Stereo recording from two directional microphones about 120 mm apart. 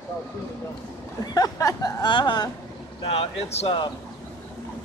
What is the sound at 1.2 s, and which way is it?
Speech, 35° left (ahead or behind).